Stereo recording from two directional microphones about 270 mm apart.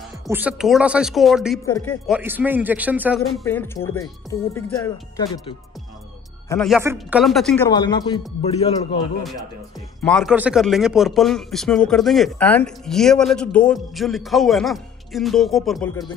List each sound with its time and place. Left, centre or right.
0.3 s speech: centre
2.1 s speech: centre
6.5 s speech: centre
7.7 s speech: centre
10.0 s speech: centre